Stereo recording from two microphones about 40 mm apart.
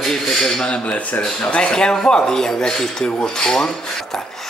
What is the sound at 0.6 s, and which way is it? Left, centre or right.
Speech, left.